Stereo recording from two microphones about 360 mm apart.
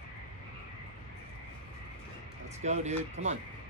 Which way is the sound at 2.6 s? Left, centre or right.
Centre.